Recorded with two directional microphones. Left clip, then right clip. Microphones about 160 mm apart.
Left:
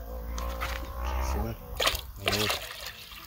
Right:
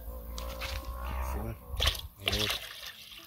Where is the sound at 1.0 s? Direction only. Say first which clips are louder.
Left 6 dB; 20° left (ahead or behind).